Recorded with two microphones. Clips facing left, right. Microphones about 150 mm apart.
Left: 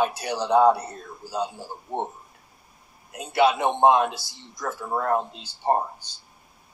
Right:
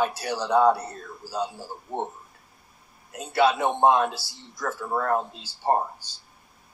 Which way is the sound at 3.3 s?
15° left (ahead or behind).